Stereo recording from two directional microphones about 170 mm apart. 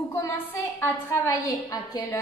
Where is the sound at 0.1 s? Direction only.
15° left (ahead or behind).